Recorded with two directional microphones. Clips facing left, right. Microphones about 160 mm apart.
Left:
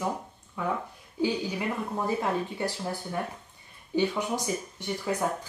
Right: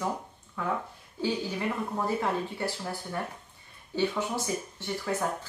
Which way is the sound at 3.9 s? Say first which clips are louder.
Left 2 dB; 15° left (ahead or behind).